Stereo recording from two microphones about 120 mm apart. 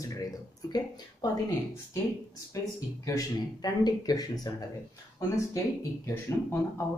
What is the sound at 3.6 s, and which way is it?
Speech, 35° left (ahead or behind).